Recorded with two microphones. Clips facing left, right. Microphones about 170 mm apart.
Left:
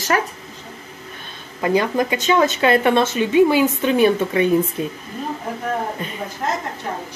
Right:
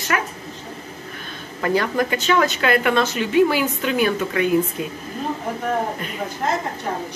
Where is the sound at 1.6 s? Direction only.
20° left (ahead or behind).